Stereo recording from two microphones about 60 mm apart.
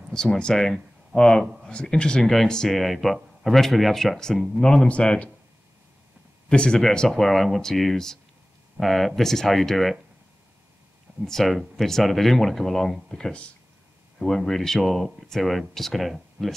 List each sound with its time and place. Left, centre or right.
0.1 s speech: centre
4.8 s speech: centre
6.5 s speech: centre
11.2 s speech: centre